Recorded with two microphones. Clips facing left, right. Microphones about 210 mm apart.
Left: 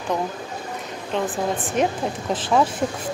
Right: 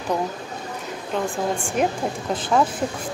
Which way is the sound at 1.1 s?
Centre (ahead or behind).